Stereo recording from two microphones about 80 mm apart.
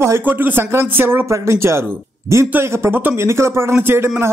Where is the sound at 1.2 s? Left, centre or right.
Right.